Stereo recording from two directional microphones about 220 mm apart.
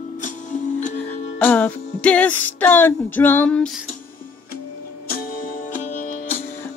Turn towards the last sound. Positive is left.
turn(degrees=35)  # may be behind; listen again after turning